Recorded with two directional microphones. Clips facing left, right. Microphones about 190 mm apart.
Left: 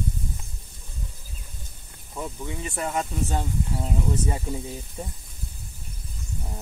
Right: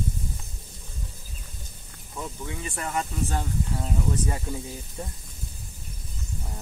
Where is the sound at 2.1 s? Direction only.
15° left (ahead or behind).